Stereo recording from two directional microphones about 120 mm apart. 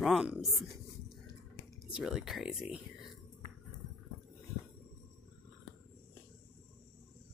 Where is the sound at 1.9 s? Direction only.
5° right (ahead or behind).